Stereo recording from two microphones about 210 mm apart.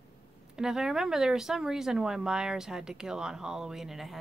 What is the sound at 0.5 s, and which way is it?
Speech, 5° right (ahead or behind).